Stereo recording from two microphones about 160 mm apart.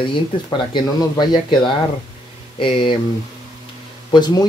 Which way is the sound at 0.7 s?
25° left (ahead or behind).